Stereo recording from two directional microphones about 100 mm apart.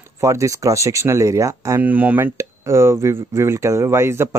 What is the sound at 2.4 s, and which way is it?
Speech, 30° right (ahead or behind).